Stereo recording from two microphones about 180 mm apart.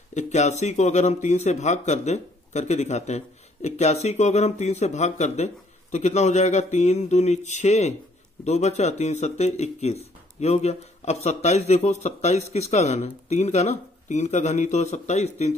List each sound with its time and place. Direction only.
0.1 s a man's voice: 40° left (ahead or behind)